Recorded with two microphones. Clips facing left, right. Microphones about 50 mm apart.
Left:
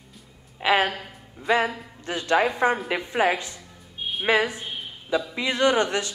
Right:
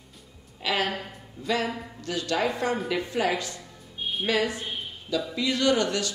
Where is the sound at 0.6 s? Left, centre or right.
Left.